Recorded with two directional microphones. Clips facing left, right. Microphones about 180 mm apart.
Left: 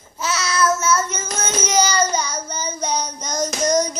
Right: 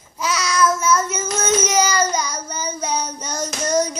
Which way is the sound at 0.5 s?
10° right (ahead or behind).